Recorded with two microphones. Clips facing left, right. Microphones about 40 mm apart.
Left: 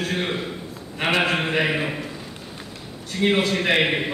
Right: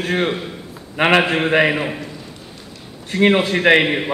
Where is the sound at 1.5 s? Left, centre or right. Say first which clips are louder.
Right 7 dB; right.